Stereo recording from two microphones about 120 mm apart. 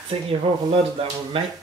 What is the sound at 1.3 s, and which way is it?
Speech, 50° right (ahead or behind).